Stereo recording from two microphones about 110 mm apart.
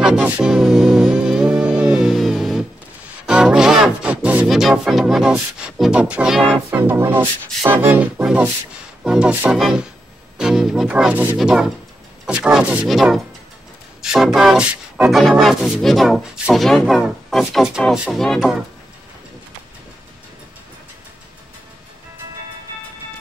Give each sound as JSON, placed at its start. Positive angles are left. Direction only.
{"t": 0.0, "sound": "music", "side_deg": -10}
{"t": 6.7, "sound": "music", "side_deg": -20}